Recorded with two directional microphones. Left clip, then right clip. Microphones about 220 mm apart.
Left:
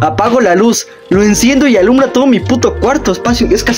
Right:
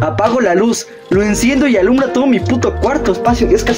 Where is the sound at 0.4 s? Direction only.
30° left (ahead or behind).